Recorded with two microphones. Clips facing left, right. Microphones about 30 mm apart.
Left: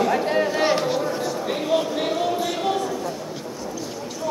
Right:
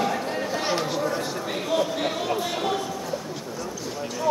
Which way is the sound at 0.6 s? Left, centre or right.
Centre.